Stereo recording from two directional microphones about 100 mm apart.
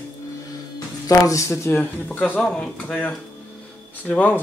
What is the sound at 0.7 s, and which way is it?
Speech, 35° left (ahead or behind).